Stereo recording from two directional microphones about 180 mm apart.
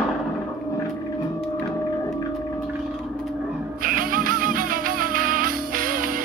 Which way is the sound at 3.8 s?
50° right (ahead or behind).